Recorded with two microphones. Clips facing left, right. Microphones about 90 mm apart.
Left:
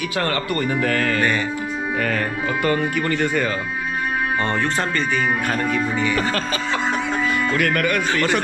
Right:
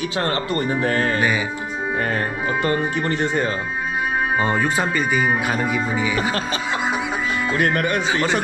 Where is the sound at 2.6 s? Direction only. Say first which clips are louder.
Left 2 dB; 25° right (ahead or behind).